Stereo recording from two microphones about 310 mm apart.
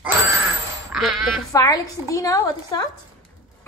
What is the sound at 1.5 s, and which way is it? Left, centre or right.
A child's voice, centre.